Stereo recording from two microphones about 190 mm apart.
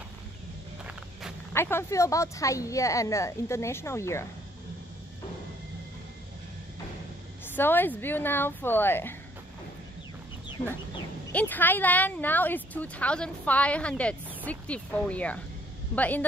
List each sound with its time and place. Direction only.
1.5 s speech: 15° left (ahead or behind)
7.4 s speech: 10° left (ahead or behind)
10.6 s speech: 25° left (ahead or behind)
11.3 s speech: 10° left (ahead or behind)